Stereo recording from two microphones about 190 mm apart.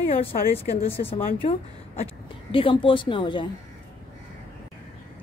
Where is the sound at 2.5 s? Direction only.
30° left (ahead or behind).